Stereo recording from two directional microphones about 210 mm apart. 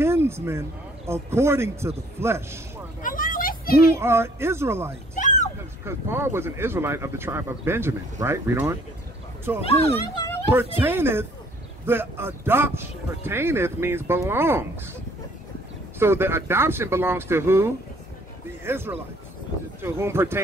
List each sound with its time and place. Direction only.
0.0 s speech: 10° right (ahead or behind)
3.0 s a sound: 40° left (ahead or behind)
3.9 s speech: 10° right (ahead or behind)
5.1 s a sound: 35° left (ahead or behind)
5.9 s speech: 10° right (ahead or behind)
9.6 s speech: 30° left (ahead or behind)
10.5 s speech: 10° right (ahead or behind)
16.0 s speech: 10° right (ahead or behind)